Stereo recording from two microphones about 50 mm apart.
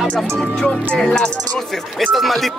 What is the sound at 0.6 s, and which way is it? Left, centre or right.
Speech, centre.